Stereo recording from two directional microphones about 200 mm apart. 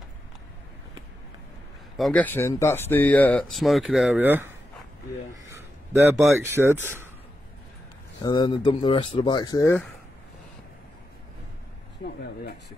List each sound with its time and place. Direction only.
2.0 s speech: 5° left (ahead or behind)
5.9 s speech: centre (ahead or behind)
8.2 s speech: 20° left (ahead or behind)
12.0 s speech: 55° left (ahead or behind)